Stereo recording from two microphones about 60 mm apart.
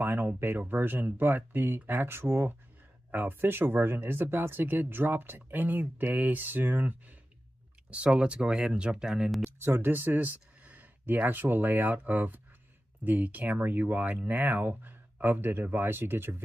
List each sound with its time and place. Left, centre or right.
0.0 s speech: right; by 9.3 s centre
9.4 s speech: right